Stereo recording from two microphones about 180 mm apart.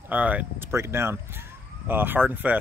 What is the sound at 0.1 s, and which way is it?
Speech, 10° right (ahead or behind).